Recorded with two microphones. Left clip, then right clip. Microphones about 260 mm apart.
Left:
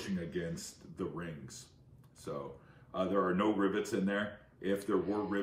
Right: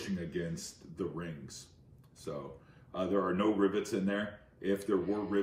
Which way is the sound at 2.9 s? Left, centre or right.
Centre.